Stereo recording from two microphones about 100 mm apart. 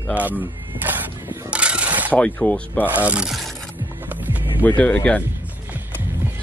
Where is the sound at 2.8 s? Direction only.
15° right (ahead or behind).